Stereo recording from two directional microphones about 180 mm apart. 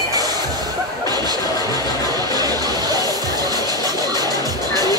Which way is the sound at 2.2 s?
20° right (ahead or behind).